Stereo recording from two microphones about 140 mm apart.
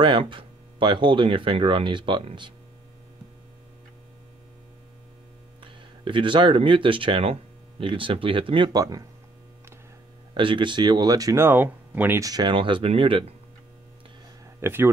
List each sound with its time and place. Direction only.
0.0 s speech: 35° right (ahead or behind)
5.6 s speech: 35° right (ahead or behind)
10.3 s speech: 35° right (ahead or behind); by 12.2 s 10° right (ahead or behind)
12.2 s speech: 30° right (ahead or behind)
14.6 s speech: 15° right (ahead or behind)